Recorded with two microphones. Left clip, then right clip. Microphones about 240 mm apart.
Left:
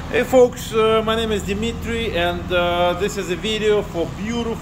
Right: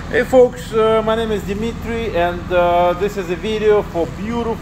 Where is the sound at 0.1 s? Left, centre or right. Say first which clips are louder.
Right 2 dB; centre.